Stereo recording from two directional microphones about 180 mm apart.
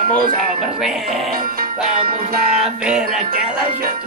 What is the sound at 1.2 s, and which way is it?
Music, 55° right (ahead or behind).